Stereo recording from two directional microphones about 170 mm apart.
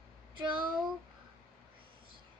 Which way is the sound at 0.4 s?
30° right (ahead or behind).